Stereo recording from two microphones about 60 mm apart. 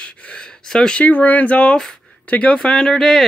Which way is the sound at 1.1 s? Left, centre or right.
Left.